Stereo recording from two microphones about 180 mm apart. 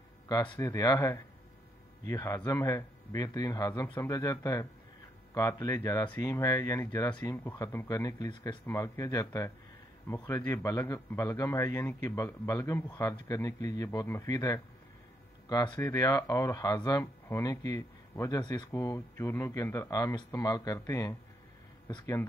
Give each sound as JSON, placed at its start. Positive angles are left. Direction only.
{"t": 0.3, "sound": "a man's voice", "side_deg": 25}